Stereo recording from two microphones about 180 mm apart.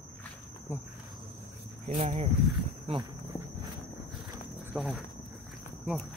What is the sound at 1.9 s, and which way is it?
Speech, 40° right (ahead or behind).